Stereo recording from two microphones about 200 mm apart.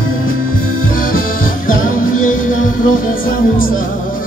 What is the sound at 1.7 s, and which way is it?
Music, 40° left (ahead or behind).